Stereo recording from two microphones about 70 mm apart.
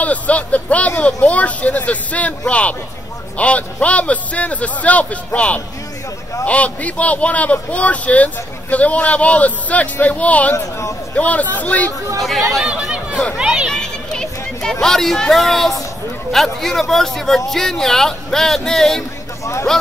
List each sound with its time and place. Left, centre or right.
0.0 s a man's voice: left
10.5 s speech: left
11.1 s a man's voice: left
12.2 s speech: centre
12.6 s chatter: centre
13.7 s speech: centre